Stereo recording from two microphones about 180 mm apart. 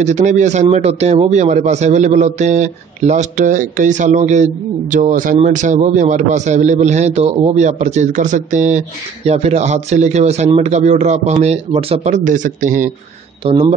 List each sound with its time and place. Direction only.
0.0 s a man's voice: 40° right (ahead or behind)
12.3 s a man's voice: 45° right (ahead or behind)
13.5 s a man's voice: 30° right (ahead or behind)